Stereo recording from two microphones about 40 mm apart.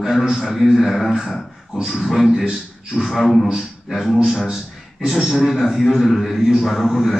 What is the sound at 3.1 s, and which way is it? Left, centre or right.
Speech, centre.